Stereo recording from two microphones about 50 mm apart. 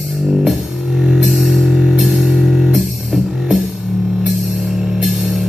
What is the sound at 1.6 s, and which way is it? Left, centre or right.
Music, centre.